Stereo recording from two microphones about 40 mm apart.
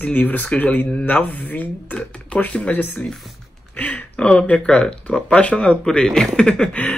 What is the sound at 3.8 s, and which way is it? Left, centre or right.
Speech, left.